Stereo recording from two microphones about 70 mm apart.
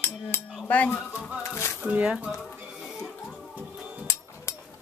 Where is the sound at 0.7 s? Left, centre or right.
Left.